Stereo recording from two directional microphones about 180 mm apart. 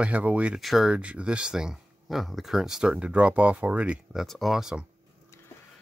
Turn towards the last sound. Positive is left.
turn(degrees=-5)  # may be behind; listen again after turning